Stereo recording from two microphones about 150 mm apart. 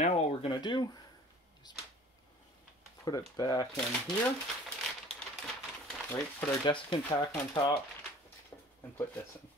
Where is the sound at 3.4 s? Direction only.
25° left (ahead or behind).